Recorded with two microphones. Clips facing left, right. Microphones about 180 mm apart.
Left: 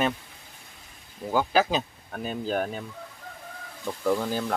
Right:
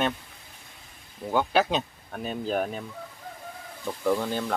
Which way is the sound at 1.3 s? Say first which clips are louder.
Even; centre (ahead or behind).